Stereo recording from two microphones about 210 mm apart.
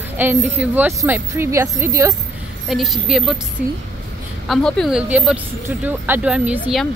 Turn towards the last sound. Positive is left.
turn(degrees=-5)  # may be behind; listen again after turning